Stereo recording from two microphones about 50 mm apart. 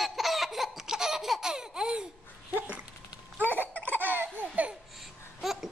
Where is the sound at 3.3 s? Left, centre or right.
Right.